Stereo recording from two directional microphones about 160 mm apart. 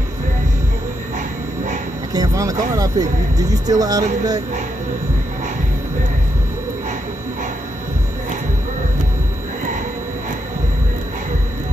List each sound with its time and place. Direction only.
2.1 s speech: 25° right (ahead or behind)